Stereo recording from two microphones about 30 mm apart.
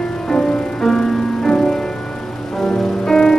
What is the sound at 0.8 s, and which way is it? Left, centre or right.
Music, centre.